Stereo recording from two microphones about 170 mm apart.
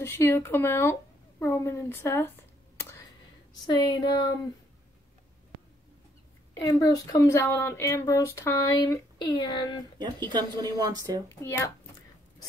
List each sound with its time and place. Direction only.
0.0 s speech: 15° left (ahead or behind)
3.6 s speech: 25° left (ahead or behind)
6.6 s speech: 20° left (ahead or behind)
9.9 s speech: 25° right (ahead or behind)
11.2 s speech: 15° left (ahead or behind)